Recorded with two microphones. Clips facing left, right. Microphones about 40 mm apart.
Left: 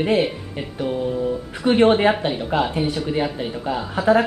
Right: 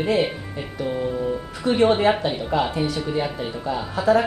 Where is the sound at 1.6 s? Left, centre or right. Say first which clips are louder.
Left 2 dB; left.